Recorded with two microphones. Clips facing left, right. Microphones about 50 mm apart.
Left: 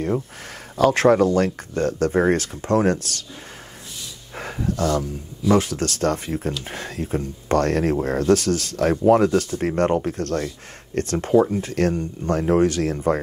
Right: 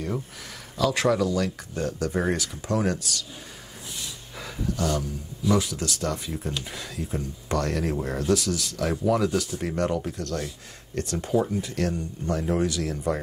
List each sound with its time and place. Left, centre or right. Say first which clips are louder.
0.7 s speech: left 7 dB; left
4.4 s a sound: left 5 dB; left
5.5 s speech: left 6 dB; left